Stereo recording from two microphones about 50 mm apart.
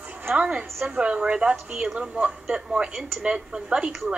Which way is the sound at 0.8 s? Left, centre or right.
Right.